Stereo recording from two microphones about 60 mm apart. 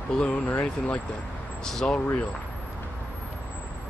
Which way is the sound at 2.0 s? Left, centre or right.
Left.